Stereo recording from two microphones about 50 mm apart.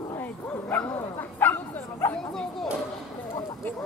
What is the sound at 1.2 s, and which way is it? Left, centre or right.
Bow-wow, left.